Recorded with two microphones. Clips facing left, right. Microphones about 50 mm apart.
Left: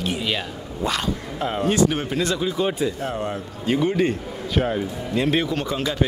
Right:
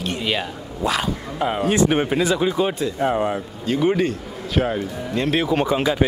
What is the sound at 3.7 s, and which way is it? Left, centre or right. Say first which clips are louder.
Speech: left 1 dB; centre.